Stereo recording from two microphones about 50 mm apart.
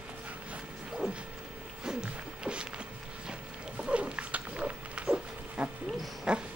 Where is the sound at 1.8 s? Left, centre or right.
Centre.